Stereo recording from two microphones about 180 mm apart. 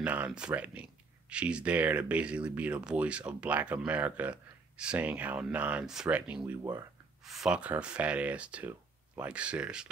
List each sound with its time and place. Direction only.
0.0 s speech: 10° right (ahead or behind)
6.6 s speech: 20° right (ahead or behind)
7.2 s speech: centre (ahead or behind)